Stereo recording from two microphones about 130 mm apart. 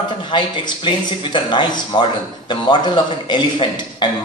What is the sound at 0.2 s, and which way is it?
A man's voice, 35° left (ahead or behind).